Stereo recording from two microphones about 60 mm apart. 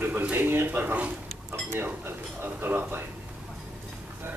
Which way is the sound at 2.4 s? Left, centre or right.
Right.